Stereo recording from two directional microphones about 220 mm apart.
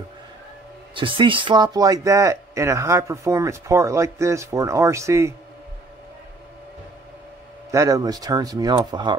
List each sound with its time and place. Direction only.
0.9 s speech: 20° right (ahead or behind)
7.7 s speech: 15° right (ahead or behind)